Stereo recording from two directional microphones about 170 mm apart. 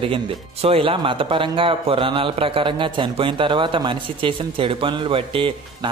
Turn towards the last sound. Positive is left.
turn(degrees=-30)  # may be behind; listen again after turning